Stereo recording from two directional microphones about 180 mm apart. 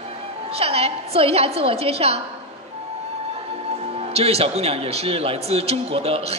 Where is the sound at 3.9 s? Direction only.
35° right (ahead or behind).